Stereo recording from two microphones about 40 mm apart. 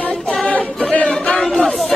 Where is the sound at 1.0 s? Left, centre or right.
Left.